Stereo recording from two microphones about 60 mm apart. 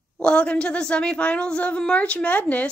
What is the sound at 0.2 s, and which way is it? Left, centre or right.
A woman's voice, centre.